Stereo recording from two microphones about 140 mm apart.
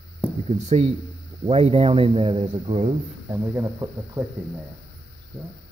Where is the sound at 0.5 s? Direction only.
50° right (ahead or behind).